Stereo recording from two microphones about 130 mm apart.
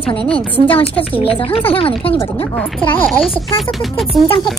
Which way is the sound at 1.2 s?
45° left (ahead or behind).